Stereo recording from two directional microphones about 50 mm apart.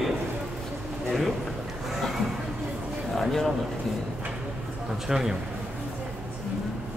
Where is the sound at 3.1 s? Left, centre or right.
Centre.